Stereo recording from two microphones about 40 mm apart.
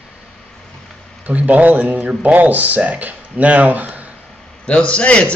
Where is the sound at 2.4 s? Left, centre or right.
Right.